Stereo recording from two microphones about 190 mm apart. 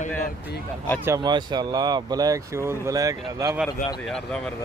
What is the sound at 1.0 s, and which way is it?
Speech, 20° right (ahead or behind).